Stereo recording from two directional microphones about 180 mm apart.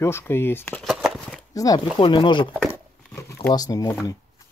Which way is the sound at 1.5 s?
20° left (ahead or behind).